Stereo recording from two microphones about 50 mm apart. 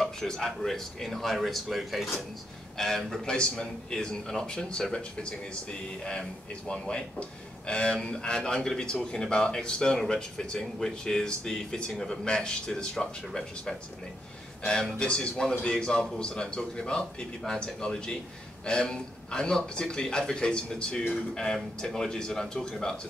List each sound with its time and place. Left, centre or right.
0.0 s speech: centre
6.7 s speech: centre
15.0 s speech: centre